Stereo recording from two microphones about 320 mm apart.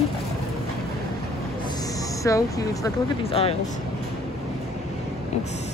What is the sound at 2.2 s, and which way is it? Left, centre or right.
Speech, centre.